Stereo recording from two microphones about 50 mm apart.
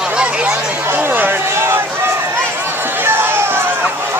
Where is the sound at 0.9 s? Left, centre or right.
Right.